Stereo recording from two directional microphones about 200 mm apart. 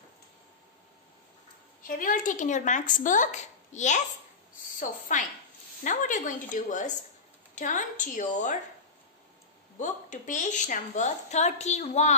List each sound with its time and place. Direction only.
1.9 s a woman's voice: 40° left (ahead or behind)
9.8 s a woman's voice: 40° left (ahead or behind)